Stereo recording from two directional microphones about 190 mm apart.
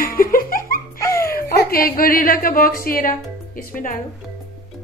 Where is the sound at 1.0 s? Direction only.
15° left (ahead or behind).